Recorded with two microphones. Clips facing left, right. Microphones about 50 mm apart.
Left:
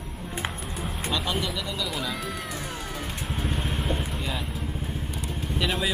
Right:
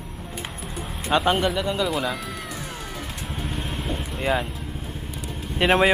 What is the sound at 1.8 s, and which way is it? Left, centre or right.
Music, centre.